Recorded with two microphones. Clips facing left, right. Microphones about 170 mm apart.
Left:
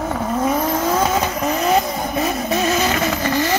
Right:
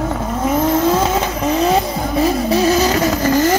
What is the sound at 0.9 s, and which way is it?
Vehicle, 30° right (ahead or behind).